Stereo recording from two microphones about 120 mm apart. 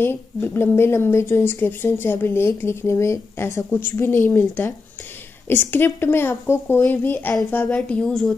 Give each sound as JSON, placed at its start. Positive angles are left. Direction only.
{"t": 0.0, "sound": "speech", "side_deg": 20}